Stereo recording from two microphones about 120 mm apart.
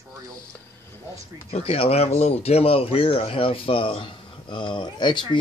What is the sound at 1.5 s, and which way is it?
Speech, 55° left (ahead or behind).